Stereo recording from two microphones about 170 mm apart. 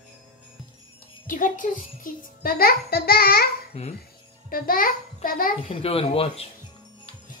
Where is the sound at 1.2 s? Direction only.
50° left (ahead or behind).